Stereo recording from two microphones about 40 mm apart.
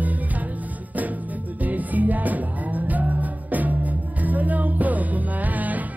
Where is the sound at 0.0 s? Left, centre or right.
Right.